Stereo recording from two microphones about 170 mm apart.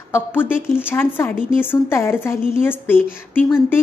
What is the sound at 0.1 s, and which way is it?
A woman's voice, 10° left (ahead or behind).